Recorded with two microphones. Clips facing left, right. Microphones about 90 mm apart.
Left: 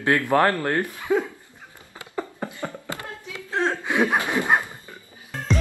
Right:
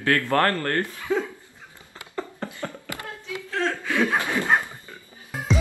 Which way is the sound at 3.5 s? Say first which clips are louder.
Left 2 dB; 20° left (ahead or behind).